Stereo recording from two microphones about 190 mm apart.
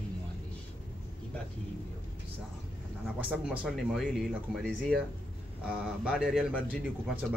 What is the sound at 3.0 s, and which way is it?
Speech, 5° right (ahead or behind).